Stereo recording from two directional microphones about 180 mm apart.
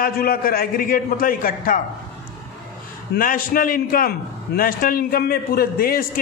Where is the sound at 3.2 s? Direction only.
50° left (ahead or behind).